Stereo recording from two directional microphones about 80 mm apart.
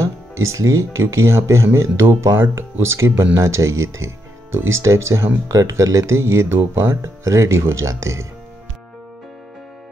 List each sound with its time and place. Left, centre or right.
0.0 s speech: right